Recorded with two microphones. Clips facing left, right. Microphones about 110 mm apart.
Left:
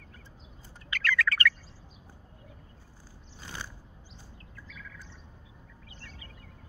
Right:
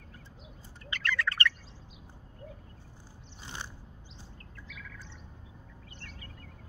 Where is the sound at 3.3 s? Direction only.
20° right (ahead or behind).